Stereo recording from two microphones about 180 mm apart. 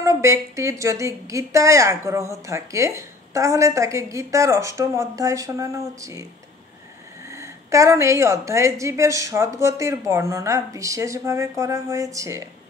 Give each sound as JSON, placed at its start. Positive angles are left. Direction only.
{"t": 0.0, "sound": "a woman's voice", "side_deg": -15}
{"t": 7.2, "sound": "a woman's voice", "side_deg": -15}